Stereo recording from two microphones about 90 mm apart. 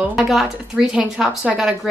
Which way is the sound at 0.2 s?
5° right (ahead or behind).